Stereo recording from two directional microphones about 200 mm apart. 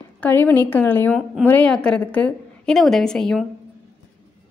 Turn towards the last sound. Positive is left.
turn(degrees=5)  # may be behind; listen again after turning